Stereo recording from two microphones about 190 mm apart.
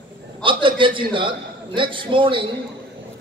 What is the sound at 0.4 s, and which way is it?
A man's voice, 25° right (ahead or behind).